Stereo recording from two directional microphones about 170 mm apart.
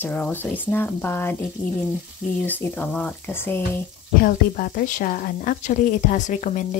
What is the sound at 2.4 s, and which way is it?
Speech, 10° left (ahead or behind).